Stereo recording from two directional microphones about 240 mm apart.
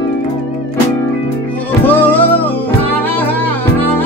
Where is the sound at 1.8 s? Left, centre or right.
Centre.